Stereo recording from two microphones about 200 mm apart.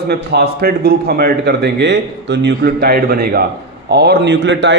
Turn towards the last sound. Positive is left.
turn(degrees=-65)  # may be behind; listen again after turning